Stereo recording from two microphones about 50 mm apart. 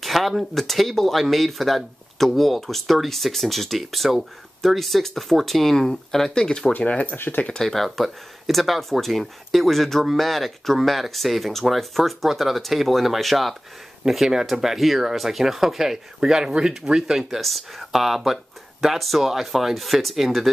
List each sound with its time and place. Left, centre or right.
0.0 s speech: centre
6.8 s speech: left
7.5 s speech: centre
17.4 s speech: centre